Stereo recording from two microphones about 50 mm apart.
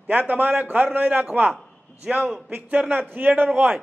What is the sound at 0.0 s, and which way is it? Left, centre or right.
Speech, right.